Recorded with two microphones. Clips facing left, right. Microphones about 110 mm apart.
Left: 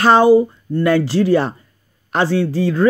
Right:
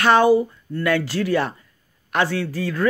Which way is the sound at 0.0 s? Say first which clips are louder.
Left 5 dB; 30° left (ahead or behind).